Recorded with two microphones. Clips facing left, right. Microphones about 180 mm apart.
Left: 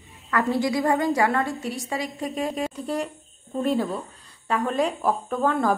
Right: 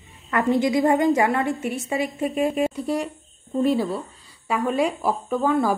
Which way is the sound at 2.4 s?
10° right (ahead or behind).